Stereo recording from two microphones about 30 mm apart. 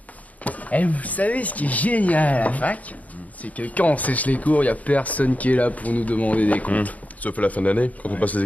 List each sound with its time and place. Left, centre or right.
0.4 s speech: left